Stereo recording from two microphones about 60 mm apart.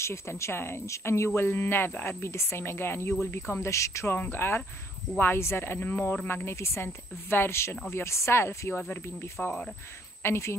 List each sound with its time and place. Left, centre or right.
0.0 s speech: left
3.6 s speech: left
4.1 s speech: left
9.4 s speech: centre
10.2 s speech: left